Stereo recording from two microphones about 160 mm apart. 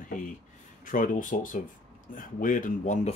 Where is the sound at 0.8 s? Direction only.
55° left (ahead or behind).